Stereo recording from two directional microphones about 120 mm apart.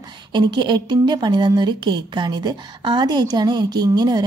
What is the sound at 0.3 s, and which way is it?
A woman's voice, 40° right (ahead or behind).